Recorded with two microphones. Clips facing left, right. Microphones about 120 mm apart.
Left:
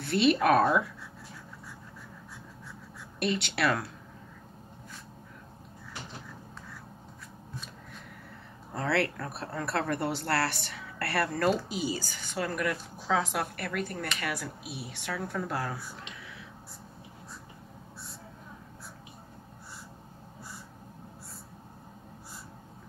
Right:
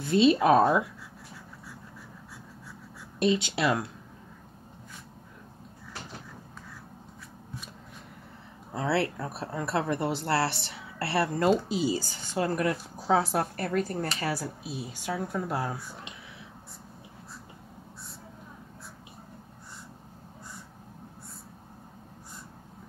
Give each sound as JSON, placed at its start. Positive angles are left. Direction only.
{"t": 0.0, "sound": "a woman's voice", "side_deg": -20}
{"t": 3.5, "sound": "a woman's voice", "side_deg": -20}
{"t": 8.7, "sound": "a woman's voice", "side_deg": -25}
{"t": 15.0, "sound": "a woman's voice", "side_deg": -20}